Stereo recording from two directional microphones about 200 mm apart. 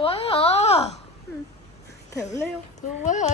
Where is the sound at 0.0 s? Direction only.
30° left (ahead or behind).